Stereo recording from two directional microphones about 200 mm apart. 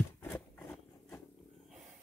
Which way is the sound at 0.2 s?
10° left (ahead or behind).